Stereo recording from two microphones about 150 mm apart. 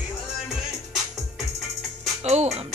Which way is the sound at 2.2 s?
45° right (ahead or behind).